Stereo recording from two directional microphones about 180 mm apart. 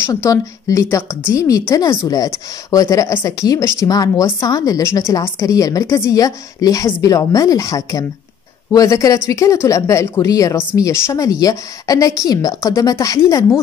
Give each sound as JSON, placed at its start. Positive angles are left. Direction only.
{"t": 0.0, "sound": "speech", "side_deg": 15}